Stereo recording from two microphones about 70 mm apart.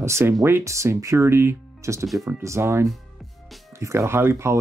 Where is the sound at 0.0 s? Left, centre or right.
Right.